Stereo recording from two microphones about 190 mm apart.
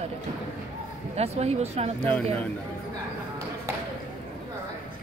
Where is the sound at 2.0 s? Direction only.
5° left (ahead or behind).